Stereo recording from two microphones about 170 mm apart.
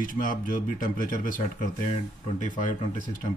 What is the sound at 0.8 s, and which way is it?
Speech, 50° left (ahead or behind).